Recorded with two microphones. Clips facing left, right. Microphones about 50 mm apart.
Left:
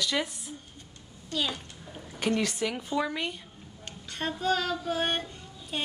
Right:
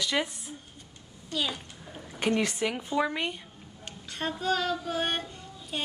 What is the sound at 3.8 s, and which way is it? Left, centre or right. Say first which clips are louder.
Speech: even; centre.